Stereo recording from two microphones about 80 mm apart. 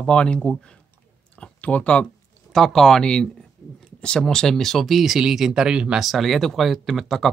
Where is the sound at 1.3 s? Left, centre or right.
Centre.